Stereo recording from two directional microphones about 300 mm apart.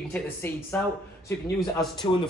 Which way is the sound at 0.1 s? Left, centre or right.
Centre.